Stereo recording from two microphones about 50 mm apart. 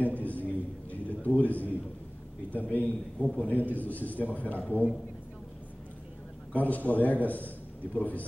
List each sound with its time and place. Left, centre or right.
0.0 s a sound: left
2.5 s a man's voice: left
6.5 s a man's voice: left